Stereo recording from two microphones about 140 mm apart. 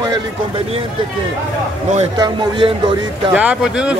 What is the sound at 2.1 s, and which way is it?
Speech, 30° right (ahead or behind).